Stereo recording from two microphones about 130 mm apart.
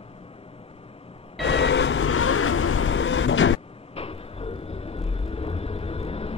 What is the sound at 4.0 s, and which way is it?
Vehicle, 50° left (ahead or behind).